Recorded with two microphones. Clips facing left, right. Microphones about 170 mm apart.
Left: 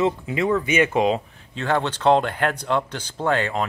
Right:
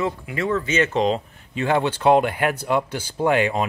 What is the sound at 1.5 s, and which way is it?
Speech, 10° right (ahead or behind).